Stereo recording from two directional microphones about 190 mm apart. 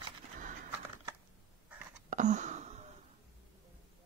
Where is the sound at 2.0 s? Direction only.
40° right (ahead or behind).